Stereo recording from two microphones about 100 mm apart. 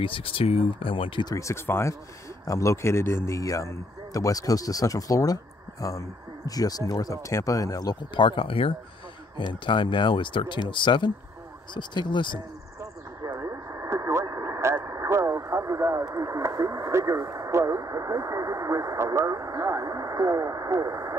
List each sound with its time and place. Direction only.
0.0 s speech: 65° left (ahead or behind)
1.2 s a man's voice: 30° left (ahead or behind); by 12.4 s 50° left (ahead or behind)
13.3 s radio: 30° right (ahead or behind)